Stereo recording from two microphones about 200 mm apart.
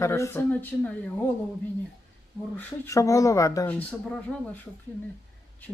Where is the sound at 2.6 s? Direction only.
15° left (ahead or behind).